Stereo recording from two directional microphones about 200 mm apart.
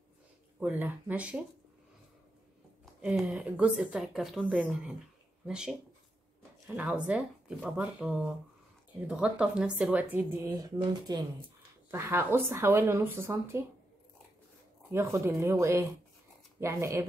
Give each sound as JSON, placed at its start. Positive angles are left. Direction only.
{"t": 0.6, "sound": "speech", "side_deg": -10}
{"t": 2.8, "sound": "a woman's voice", "side_deg": -5}
{"t": 14.9, "sound": "speech", "side_deg": -15}